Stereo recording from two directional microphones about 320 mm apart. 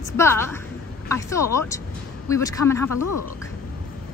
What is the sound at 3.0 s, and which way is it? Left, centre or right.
Speech, left.